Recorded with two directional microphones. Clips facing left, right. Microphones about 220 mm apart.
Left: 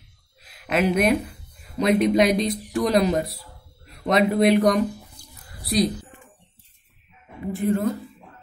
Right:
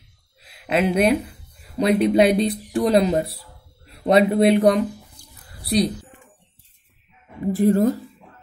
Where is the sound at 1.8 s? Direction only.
30° right (ahead or behind).